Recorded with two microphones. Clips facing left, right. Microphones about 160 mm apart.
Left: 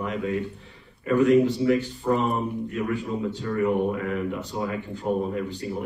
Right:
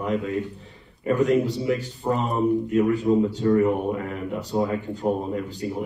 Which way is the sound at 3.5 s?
40° right (ahead or behind).